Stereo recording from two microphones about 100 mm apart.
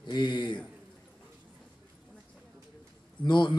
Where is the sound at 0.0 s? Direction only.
50° left (ahead or behind).